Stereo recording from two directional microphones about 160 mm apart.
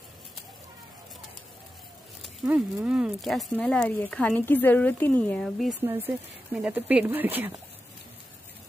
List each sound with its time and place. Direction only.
2.4 s speech: 10° right (ahead or behind)
5.9 s speech: 15° right (ahead or behind)